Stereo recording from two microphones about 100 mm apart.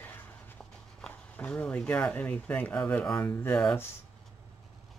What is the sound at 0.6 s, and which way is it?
Speech, 10° left (ahead or behind).